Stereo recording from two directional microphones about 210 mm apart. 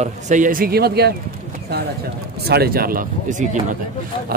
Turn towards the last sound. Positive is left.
turn(degrees=-35)  # may be behind; listen again after turning